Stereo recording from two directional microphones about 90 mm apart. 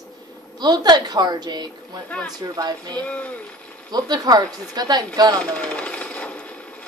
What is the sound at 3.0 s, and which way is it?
Speech, 15° left (ahead or behind).